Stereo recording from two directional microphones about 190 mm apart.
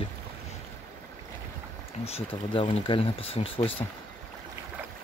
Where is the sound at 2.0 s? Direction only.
30° left (ahead or behind).